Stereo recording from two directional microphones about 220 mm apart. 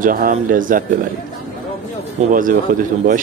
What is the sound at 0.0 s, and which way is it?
Speech, 40° right (ahead or behind).